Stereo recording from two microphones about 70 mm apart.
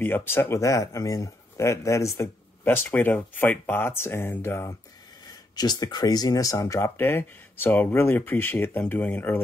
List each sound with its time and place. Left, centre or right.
0.0 s speech: left
2.6 s speech: left
5.2 s speech: left
6.8 s speech: left